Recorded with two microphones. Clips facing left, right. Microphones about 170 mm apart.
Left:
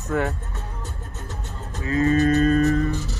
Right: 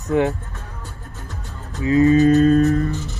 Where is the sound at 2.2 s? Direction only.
Centre (ahead or behind).